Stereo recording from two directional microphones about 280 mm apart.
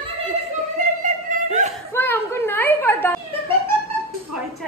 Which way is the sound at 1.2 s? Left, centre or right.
Right.